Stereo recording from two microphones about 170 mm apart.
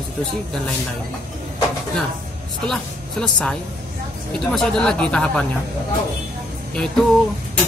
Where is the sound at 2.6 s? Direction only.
5° left (ahead or behind).